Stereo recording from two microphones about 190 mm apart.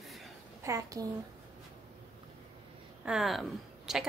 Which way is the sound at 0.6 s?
15° right (ahead or behind).